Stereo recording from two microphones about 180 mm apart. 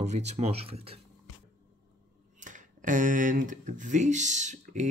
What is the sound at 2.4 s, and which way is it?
Speech, 45° right (ahead or behind).